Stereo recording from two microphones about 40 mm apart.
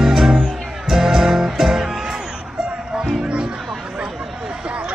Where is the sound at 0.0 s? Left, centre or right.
Centre.